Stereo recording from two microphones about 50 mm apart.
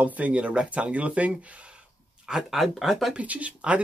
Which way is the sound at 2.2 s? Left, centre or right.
Centre.